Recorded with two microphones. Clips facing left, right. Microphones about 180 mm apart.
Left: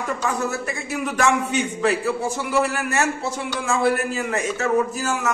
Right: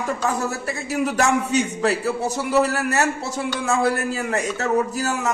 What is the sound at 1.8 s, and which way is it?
A man's voice, 40° right (ahead or behind).